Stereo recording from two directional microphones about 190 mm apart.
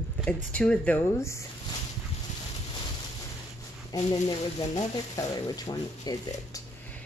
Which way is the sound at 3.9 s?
20° left (ahead or behind).